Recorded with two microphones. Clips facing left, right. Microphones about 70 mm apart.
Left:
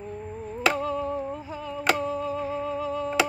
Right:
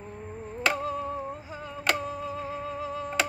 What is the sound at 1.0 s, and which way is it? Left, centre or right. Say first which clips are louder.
Music: left 4 dB; centre.